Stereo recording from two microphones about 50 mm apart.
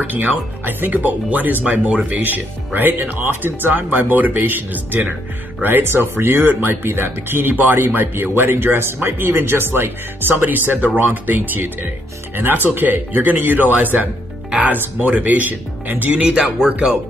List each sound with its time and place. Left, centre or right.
0.1 s speech: right
16.2 s speech: right